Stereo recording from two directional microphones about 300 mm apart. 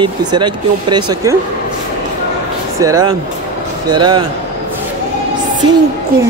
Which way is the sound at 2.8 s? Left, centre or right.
Centre.